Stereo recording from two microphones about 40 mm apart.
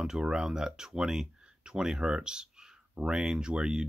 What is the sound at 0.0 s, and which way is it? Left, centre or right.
Speech, centre.